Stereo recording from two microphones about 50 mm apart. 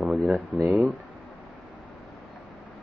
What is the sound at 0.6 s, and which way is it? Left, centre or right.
Speech, right.